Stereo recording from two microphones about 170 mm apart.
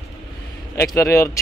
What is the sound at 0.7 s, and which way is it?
Speech, 15° left (ahead or behind).